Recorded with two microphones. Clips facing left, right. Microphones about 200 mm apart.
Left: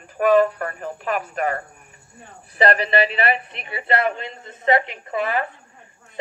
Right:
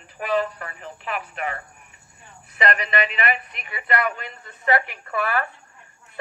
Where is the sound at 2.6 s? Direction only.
30° left (ahead or behind).